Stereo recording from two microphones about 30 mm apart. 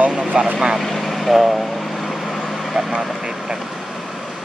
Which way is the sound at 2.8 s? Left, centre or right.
Centre.